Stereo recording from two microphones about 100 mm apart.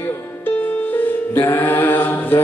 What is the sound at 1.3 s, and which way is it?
Chant, 20° left (ahead or behind).